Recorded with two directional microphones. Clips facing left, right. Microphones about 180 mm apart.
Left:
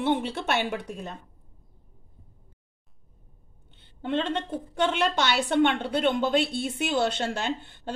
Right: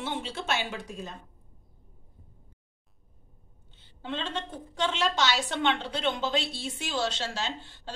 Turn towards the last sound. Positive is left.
turn(degrees=55)  # may be behind; listen again after turning